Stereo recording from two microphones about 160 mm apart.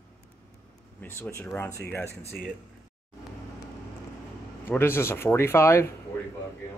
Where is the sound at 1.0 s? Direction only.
15° left (ahead or behind).